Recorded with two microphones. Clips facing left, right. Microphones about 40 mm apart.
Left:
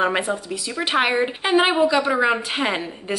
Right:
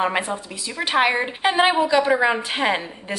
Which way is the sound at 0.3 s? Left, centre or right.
Centre.